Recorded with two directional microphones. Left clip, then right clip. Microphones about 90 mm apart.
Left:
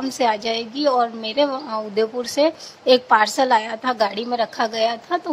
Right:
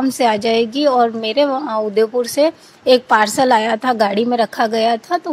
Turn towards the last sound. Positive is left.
turn(degrees=-35)  # may be behind; listen again after turning